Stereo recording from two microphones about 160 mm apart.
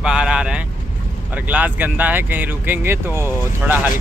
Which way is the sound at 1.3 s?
10° right (ahead or behind).